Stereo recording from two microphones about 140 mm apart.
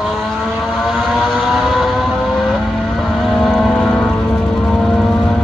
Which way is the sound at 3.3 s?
Centre (ahead or behind).